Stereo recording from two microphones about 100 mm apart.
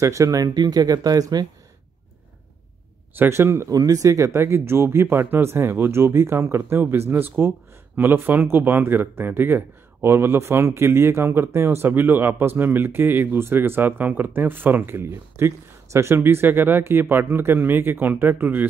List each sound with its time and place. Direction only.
0.0 s speech: 30° right (ahead or behind)
3.2 s speech: 25° right (ahead or behind)